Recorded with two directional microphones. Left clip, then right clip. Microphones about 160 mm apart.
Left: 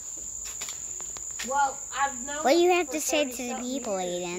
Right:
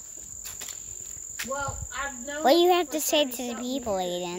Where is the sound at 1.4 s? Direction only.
75° right (ahead or behind).